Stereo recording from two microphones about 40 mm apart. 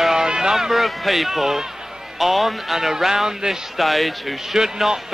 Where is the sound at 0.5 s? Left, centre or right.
Centre.